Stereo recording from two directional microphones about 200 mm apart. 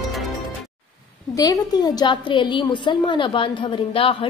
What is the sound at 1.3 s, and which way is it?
A woman's voice, 20° left (ahead or behind).